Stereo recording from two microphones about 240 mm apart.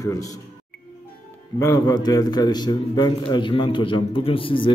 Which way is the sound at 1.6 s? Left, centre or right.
Centre.